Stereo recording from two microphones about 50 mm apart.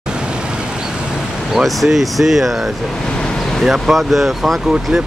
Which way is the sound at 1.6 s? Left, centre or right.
Centre.